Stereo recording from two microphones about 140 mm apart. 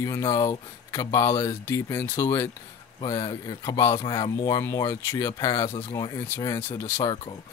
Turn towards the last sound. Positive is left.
turn(degrees=20)  # may be behind; listen again after turning